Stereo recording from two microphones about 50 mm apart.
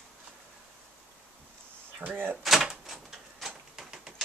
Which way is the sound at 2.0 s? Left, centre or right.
Right.